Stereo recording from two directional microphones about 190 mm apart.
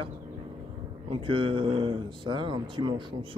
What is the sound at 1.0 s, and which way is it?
Speech, 25° right (ahead or behind).